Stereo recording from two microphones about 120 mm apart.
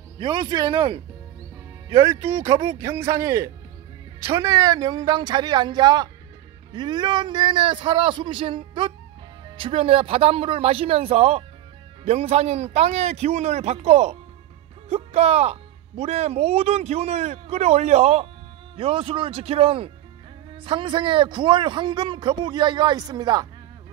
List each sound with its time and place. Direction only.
0.2 s a man's voice: 40° right (ahead or behind)
2.0 s a man's voice: 20° right (ahead or behind)